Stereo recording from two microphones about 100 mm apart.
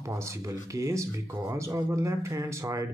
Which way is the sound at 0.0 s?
30° right (ahead or behind).